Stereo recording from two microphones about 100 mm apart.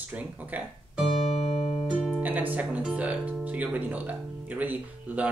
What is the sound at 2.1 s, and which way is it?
Speech, 15° right (ahead or behind).